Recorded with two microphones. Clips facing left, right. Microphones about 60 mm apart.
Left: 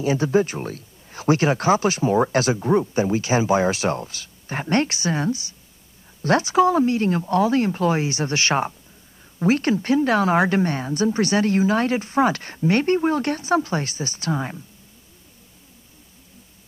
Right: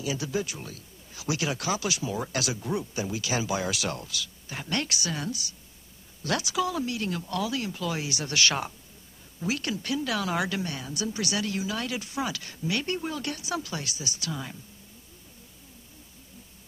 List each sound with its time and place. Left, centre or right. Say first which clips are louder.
0.0 s speech: left 11 dB; left